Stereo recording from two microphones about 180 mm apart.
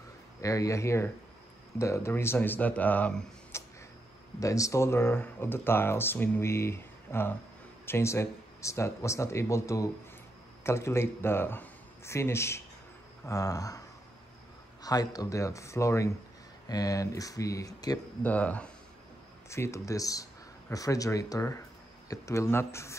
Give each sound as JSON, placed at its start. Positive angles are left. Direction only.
{"t": 0.4, "sound": "speech", "side_deg": 20}
{"t": 3.5, "sound": "a sound", "side_deg": 15}
{"t": 4.4, "sound": "speech", "side_deg": 15}
{"t": 18.3, "sound": "speech", "side_deg": 10}